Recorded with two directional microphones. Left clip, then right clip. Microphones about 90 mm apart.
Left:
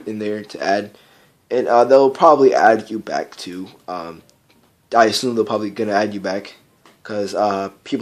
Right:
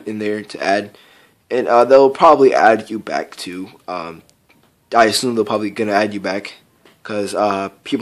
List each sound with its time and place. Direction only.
0.0 s a man's voice: 20° right (ahead or behind)